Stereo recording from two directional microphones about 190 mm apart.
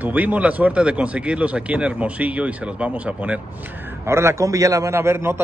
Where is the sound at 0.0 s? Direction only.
10° right (ahead or behind).